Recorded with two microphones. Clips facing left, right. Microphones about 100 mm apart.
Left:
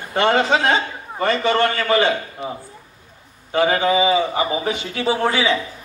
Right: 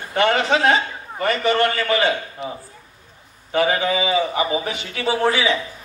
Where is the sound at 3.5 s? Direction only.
30° left (ahead or behind).